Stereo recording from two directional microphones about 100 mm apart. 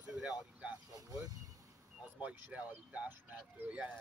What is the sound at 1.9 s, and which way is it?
Speech, 15° right (ahead or behind).